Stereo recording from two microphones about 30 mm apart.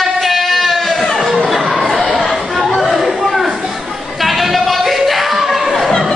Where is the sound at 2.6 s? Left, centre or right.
Centre.